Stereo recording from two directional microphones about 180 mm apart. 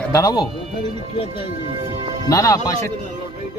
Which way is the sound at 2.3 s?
20° left (ahead or behind).